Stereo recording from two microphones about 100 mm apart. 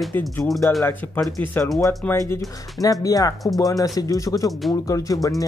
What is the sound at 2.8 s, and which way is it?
Speech, 35° left (ahead or behind).